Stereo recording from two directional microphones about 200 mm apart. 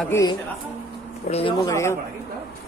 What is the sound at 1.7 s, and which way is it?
Speech, 15° left (ahead or behind).